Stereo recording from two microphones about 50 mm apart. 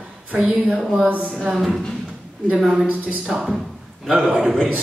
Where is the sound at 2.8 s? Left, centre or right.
Right.